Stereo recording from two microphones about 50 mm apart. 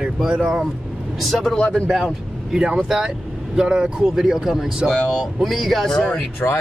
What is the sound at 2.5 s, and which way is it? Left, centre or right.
Speech, centre.